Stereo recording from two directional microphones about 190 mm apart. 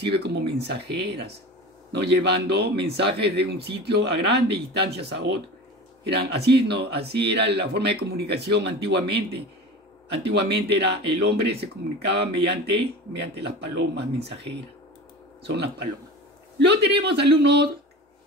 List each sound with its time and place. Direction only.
0.0 s speech: 65° right (ahead or behind)